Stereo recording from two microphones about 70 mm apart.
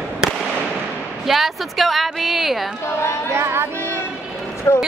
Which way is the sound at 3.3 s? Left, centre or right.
Right.